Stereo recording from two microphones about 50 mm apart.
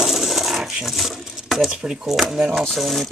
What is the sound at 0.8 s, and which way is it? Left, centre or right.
Speech, centre.